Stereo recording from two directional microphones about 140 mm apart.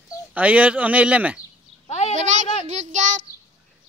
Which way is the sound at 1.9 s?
50° left (ahead or behind).